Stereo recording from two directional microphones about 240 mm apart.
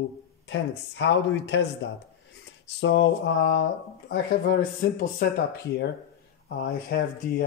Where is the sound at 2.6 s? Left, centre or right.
Left.